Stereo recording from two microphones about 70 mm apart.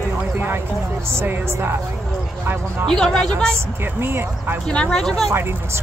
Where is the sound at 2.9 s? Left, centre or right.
Centre.